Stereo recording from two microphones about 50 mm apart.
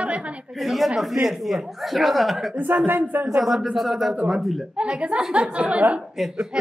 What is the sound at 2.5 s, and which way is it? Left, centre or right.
Speech, right.